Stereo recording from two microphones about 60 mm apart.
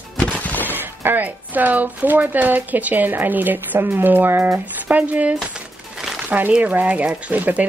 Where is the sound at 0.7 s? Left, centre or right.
Right.